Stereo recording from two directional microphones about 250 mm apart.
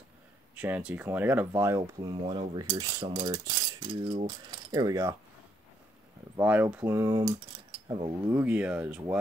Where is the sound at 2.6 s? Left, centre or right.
Centre.